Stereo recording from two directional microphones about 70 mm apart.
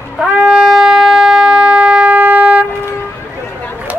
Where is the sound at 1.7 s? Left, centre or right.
Centre.